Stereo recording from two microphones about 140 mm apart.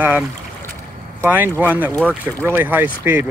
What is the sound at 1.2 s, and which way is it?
Speech, 15° right (ahead or behind).